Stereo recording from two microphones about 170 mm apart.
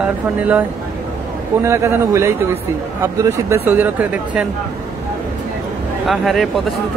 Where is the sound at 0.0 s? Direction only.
10° right (ahead or behind).